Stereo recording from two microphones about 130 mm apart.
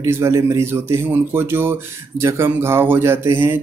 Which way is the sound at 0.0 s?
20° right (ahead or behind).